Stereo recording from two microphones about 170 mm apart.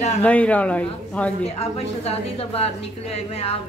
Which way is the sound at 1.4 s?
35° left (ahead or behind).